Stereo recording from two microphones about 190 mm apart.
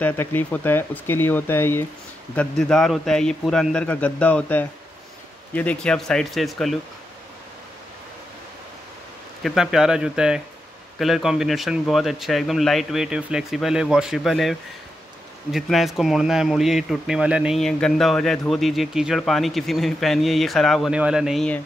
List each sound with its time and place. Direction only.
0.0 s speech: 10° left (ahead or behind)
9.4 s speech: centre (ahead or behind)